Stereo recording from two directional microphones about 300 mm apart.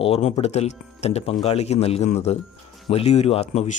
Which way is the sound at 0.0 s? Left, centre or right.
Left.